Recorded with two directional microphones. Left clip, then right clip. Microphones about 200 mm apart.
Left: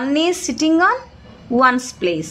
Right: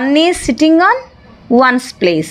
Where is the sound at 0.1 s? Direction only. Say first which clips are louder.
Right 7 dB; 20° right (ahead or behind).